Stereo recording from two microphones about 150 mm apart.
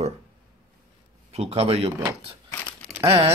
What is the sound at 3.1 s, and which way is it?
Cutlery, 35° right (ahead or behind).